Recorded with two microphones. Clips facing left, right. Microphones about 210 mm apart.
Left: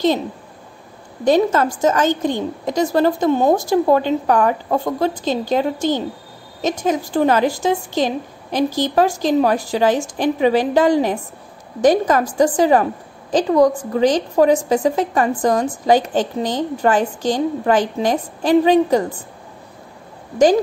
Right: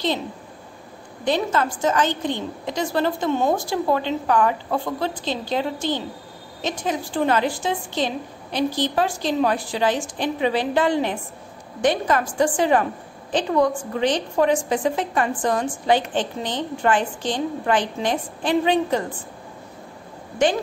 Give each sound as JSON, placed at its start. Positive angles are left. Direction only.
{"t": 1.2, "sound": "a woman's voice", "side_deg": 45}